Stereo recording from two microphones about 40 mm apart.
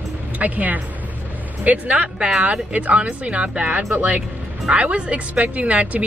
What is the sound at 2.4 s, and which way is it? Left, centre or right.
Speech, right.